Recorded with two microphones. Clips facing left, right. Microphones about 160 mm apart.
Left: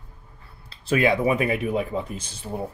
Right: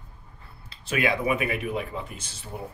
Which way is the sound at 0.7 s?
35° left (ahead or behind).